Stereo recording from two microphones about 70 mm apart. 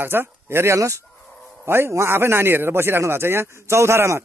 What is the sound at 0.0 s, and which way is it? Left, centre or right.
A man's voice, right.